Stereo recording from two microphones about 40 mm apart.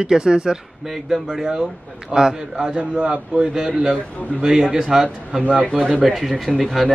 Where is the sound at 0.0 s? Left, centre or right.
Centre.